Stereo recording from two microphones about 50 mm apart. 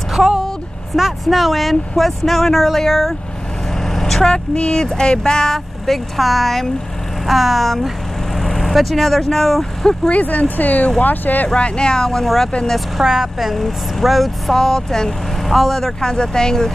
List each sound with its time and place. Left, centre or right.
0.1 s vehicle: centre
0.9 s speech: centre
3.7 s vehicle: centre
4.6 s speech: centre
10.0 s speech: left
11.4 s speech: left
12.6 s speech: centre